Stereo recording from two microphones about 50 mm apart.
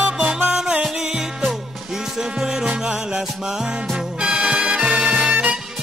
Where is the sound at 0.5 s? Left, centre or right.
Centre.